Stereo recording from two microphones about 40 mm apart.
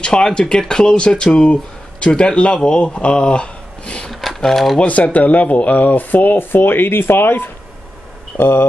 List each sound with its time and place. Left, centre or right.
0.0 s speech: left
4.1 s a sound: centre
4.5 s speech: centre
4.8 s speech: left